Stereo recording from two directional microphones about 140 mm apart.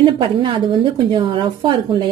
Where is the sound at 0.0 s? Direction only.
40° right (ahead or behind).